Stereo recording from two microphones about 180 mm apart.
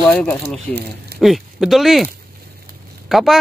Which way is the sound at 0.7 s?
65° right (ahead or behind).